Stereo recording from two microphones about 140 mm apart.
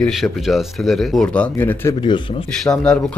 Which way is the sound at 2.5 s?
5° left (ahead or behind).